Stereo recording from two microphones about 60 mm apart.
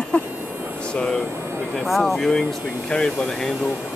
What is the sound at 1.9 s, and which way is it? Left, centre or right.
Speech, centre.